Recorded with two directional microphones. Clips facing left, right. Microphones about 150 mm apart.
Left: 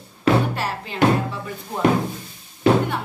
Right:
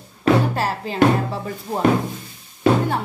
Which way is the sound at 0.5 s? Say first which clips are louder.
Right 4 dB; 35° right (ahead or behind).